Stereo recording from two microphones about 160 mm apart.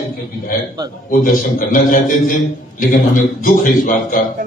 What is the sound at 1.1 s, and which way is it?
A man's voice, 60° left (ahead or behind).